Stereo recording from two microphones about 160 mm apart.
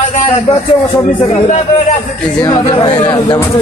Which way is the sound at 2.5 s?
35° left (ahead or behind).